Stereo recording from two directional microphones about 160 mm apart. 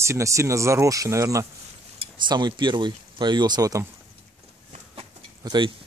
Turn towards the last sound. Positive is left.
turn(degrees=-25)  # may be behind; listen again after turning